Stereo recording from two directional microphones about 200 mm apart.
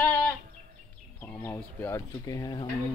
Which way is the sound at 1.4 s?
15° left (ahead or behind).